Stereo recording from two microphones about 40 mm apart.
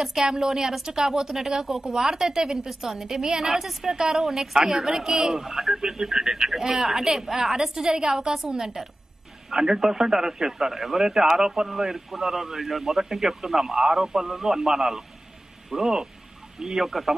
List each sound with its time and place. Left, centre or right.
0.0 s a man's voice: centre